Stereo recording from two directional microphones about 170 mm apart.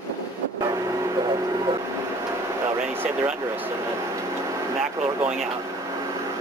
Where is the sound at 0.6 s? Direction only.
20° right (ahead or behind).